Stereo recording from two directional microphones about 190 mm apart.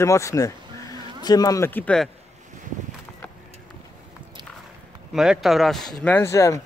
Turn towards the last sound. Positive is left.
turn(degrees=15)  # may be behind; listen again after turning